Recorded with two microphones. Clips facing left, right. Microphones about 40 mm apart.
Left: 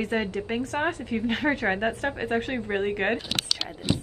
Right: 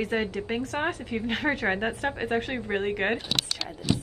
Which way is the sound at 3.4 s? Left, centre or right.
Left.